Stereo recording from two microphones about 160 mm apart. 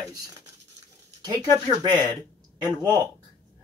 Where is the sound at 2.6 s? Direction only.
25° right (ahead or behind).